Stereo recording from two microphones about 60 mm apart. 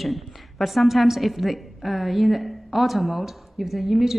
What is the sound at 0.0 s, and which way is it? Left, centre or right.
A woman's voice, centre.